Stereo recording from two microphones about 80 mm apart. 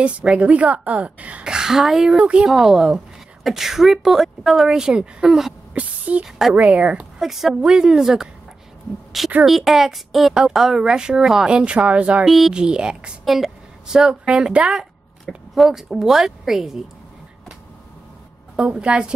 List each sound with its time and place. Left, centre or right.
0.0 s a woman's voice: centre
5.8 s a sound: centre
6.2 s a woman's voice: centre
6.5 s a woman's voice: centre
7.2 s a woman's voice: centre
9.4 s a woman's voice: centre
12.3 s a woman's voice: centre
15.2 s a woman's voice: centre
18.6 s a woman's voice: centre